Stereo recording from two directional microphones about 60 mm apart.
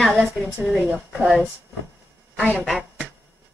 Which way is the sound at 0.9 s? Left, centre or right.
Centre.